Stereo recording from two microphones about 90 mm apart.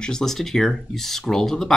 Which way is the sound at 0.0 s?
5° left (ahead or behind).